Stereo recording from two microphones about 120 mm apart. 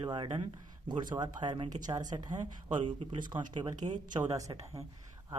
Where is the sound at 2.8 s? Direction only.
90° right.